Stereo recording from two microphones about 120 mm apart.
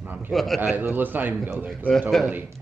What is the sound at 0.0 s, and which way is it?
Bird, 15° right (ahead or behind).